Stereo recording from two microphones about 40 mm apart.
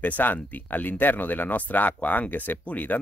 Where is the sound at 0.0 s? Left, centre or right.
Left.